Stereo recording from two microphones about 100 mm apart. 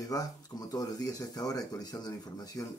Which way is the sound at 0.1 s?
35° left (ahead or behind).